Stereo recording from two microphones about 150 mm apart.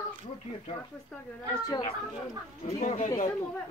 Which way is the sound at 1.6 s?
30° left (ahead or behind).